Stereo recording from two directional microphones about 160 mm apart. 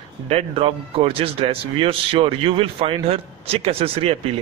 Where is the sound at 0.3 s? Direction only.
40° right (ahead or behind).